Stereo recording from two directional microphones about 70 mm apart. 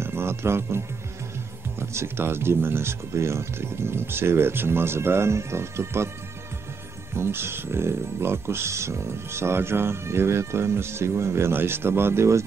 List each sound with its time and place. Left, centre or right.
0.0 s speech: right
7.2 s speech: right